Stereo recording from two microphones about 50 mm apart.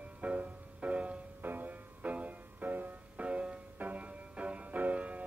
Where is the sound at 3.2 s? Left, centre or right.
Right.